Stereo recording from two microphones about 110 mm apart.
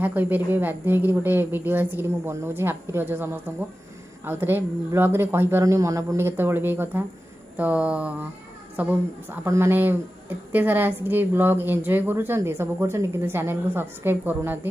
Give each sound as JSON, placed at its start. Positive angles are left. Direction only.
{"t": 0.0, "sound": "a woman's voice", "side_deg": -15}